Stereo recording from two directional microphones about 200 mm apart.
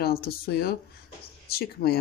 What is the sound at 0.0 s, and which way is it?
Speech, 50° left (ahead or behind).